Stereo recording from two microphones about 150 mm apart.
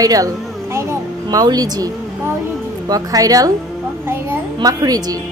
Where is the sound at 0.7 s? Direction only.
20° right (ahead or behind).